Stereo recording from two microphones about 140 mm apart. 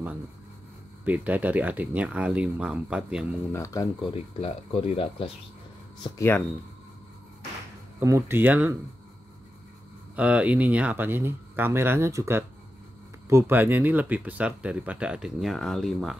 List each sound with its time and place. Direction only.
1.0 s speech: 10° right (ahead or behind)
3.5 s speech: 20° left (ahead or behind)
4.0 s speech: 45° left (ahead or behind)
6.1 s speech: 15° left (ahead or behind)
8.0 s speech: 20° right (ahead or behind)
10.1 s speech: 10° right (ahead or behind)